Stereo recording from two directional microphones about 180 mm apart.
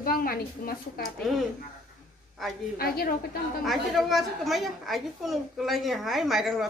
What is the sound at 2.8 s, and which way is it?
Speech, 55° left (ahead or behind).